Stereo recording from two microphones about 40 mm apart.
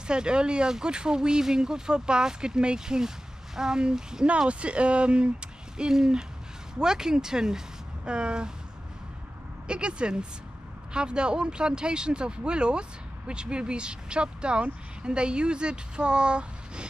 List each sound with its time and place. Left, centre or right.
0.0 s speech: right
4.5 s speech: right
9.7 s speech: right